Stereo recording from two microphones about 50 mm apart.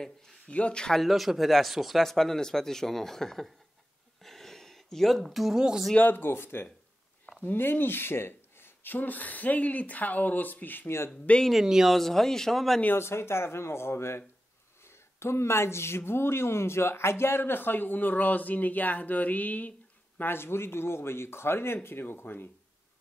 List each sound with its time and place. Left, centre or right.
0.5 s speech: left
1.0 s speech: centre
4.2 s a sound: centre
5.9 s a man's voice: left
11.6 s speech: centre
11.9 s speech: centre
12.9 s speech: left
20.2 s a man's voice: left